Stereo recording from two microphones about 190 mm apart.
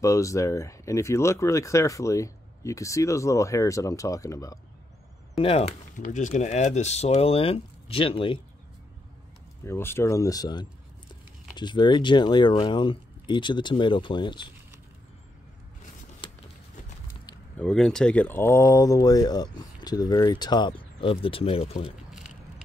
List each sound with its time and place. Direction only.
0.0 s speech: 15° left (ahead or behind)
5.4 s speech: 30° left (ahead or behind)
9.7 s speech: 15° left (ahead or behind)
17.6 s speech: 5° left (ahead or behind); by 21.9 s 30° left (ahead or behind)